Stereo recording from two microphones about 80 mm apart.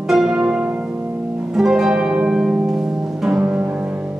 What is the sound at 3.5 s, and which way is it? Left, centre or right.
Music, right.